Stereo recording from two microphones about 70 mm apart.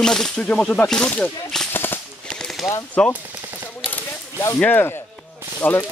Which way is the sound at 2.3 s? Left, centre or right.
Centre.